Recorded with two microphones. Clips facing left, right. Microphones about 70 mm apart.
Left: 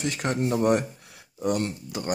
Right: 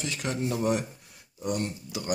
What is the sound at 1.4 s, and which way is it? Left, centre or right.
Speech, left.